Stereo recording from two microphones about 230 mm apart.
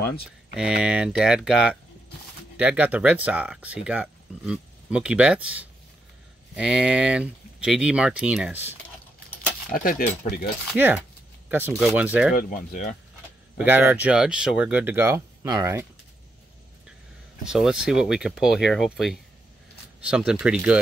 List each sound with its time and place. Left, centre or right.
0.6 s speech: centre
9.7 s cutlery: left
10.7 s speech: centre
12.4 s cutlery: left
13.6 s speech: centre
17.5 s speech: centre
20.0 s speech: centre